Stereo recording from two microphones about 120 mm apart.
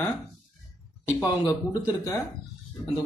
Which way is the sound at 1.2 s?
30° left (ahead or behind).